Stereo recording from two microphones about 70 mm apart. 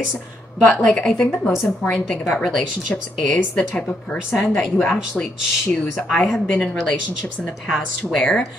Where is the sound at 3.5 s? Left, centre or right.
Centre.